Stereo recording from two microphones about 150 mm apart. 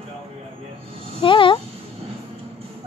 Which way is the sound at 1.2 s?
35° left (ahead or behind).